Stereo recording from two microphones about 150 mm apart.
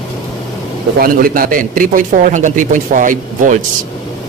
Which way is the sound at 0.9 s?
70° right (ahead or behind).